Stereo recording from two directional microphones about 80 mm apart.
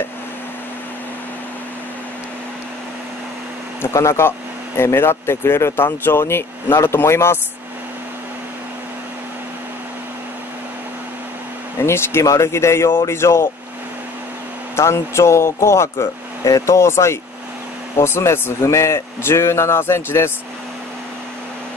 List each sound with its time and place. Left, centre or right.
3.8 s speech: left
11.8 s speech: left
14.8 s speech: left